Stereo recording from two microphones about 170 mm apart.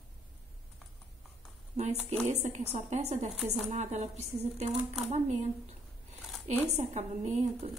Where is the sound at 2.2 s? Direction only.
40° right (ahead or behind).